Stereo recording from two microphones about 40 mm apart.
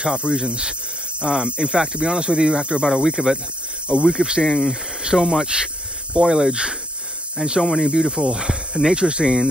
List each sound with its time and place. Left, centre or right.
0.0 s speech: right
2.9 s speech: centre
4.4 s speech: centre
6.1 s speech: centre
6.5 s speech: right